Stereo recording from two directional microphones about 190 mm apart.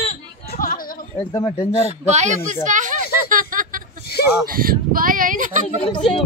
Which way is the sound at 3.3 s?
45° right (ahead or behind).